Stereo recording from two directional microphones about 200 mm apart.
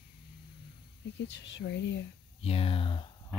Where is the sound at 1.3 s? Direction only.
65° left (ahead or behind).